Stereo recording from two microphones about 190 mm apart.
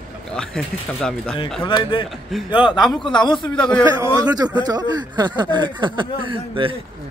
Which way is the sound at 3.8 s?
15° right (ahead or behind).